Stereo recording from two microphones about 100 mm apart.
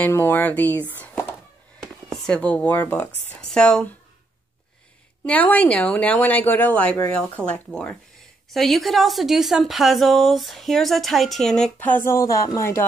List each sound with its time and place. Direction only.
0.1 s speech: 20° left (ahead or behind)
5.2 s a woman's voice: 15° left (ahead or behind)
11.8 s speech: 20° left (ahead or behind)